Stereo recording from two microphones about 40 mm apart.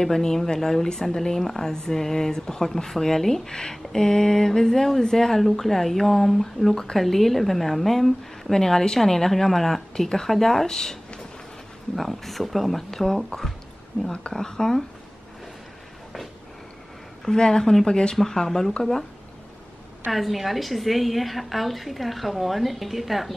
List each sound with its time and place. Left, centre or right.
0.0 s a woman's voice: centre
17.2 s speech: centre
18.1 s speech: centre
20.1 s a woman's voice: centre